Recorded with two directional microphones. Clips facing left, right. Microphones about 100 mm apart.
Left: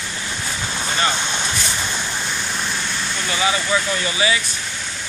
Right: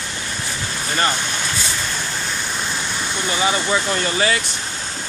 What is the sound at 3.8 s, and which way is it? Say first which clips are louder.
Speech: right 1 dB; 45° right (ahead or behind).